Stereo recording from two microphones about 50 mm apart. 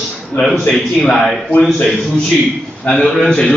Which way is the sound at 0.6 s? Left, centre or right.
Centre.